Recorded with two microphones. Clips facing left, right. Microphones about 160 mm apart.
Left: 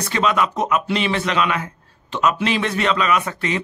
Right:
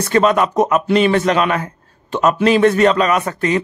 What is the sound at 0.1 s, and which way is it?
A man's voice, 45° right (ahead or behind).